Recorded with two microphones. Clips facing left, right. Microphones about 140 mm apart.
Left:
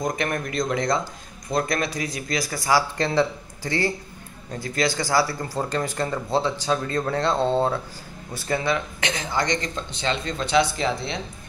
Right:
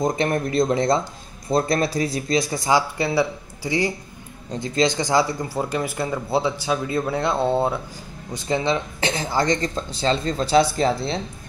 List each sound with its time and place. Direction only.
0.0 s speech: 30° right (ahead or behind)
3.0 s speech: 10° right (ahead or behind); by 11.1 s 35° right (ahead or behind)